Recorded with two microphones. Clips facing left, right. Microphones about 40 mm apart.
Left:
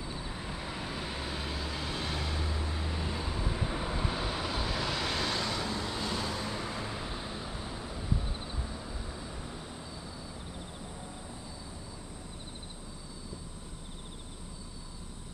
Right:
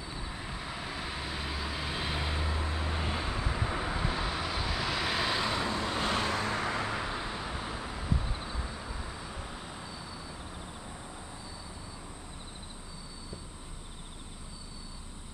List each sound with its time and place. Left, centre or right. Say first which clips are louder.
0.0 s vehicle: even; centre; by 2.9 s right
2.9 s vehicle: right 2 dB; right
3.5 s vehicle: right 1 dB; centre
5.9 s vehicle: right 4 dB; right